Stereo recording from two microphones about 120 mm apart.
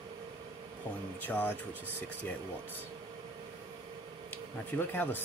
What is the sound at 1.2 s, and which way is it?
Speech, 15° left (ahead or behind).